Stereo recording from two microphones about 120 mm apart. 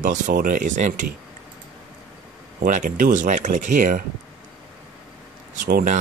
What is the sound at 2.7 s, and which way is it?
Speech, 90° right.